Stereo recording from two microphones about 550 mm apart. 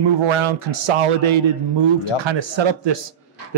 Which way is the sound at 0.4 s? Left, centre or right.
Right.